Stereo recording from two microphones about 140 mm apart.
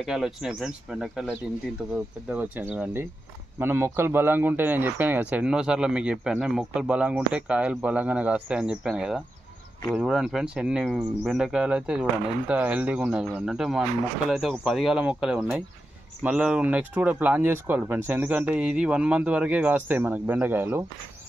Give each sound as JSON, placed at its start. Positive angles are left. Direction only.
{"t": 0.0, "sound": "a man's voice", "side_deg": -5}